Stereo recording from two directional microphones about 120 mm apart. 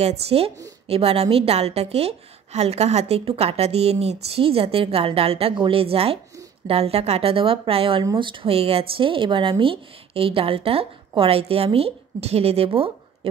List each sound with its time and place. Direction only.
0.0 s a woman's voice: 60° right (ahead or behind)